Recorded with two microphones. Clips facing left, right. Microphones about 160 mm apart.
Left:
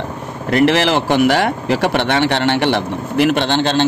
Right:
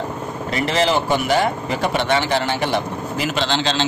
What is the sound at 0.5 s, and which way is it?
Speech, 65° left (ahead or behind).